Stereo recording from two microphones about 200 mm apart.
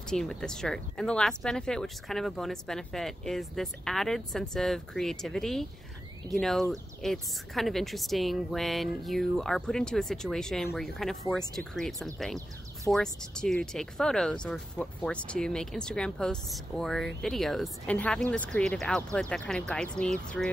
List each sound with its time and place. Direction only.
0.1 s speech: 5° left (ahead or behind)